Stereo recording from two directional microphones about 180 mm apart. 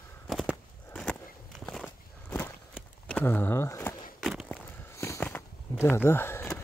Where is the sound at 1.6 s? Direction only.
5° left (ahead or behind).